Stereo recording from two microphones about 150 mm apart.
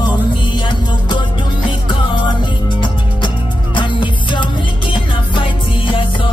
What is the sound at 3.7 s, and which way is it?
Music, 35° left (ahead or behind).